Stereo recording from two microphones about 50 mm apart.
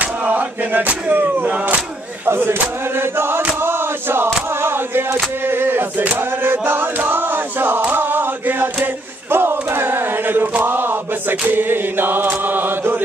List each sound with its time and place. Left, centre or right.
0.0 s a sound: right
1.5 s speech: right
2.2 s choir: right
3.0 s chant: right
4.5 s a sound: right
5.4 s choir: right
6.0 s chant: right
8.8 s choir: right